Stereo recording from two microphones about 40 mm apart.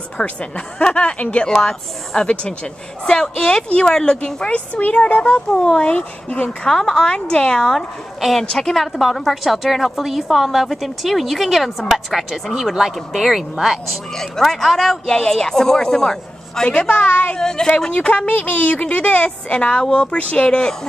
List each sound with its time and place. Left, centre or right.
0.2 s a woman's voice: left
1.6 s a woman's voice: centre
4.5 s a woman's voice: left
6.6 s a woman's voice: centre
8.2 s a woman's voice: centre
14.1 s a woman's voice: centre
15.0 s speech: centre
16.6 s a woman's voice: left
17.4 s speech: centre
17.9 s a woman's voice: left